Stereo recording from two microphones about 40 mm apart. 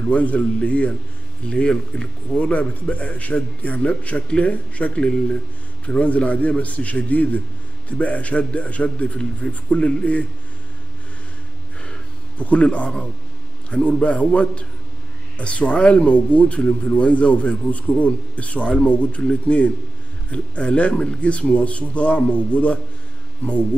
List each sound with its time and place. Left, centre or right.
0.1 s speech: left
1.5 s a man's voice: left
2.3 s speech: left
12.4 s a man's voice: left